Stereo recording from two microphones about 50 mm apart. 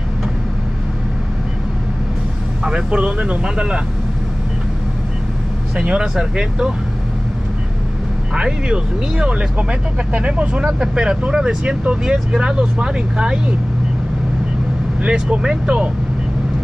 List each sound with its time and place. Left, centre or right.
2.6 s speech: centre
5.8 s speech: centre
8.4 s speech: centre
15.0 s speech: centre